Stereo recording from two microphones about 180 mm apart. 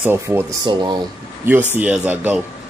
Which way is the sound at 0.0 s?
10° right (ahead or behind).